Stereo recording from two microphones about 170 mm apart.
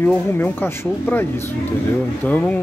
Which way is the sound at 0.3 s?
15° left (ahead or behind).